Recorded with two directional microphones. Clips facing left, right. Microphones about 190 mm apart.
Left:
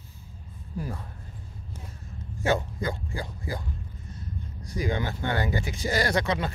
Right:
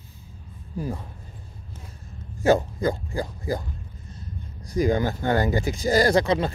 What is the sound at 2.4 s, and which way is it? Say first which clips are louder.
Speech: right 7 dB; 40° right (ahead or behind).